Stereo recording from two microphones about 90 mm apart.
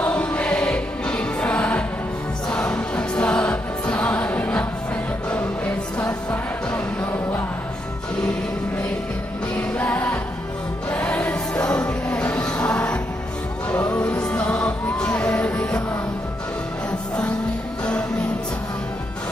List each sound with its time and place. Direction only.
0.0 s music: 15° left (ahead or behind)
9.6 s music: 15° left (ahead or behind)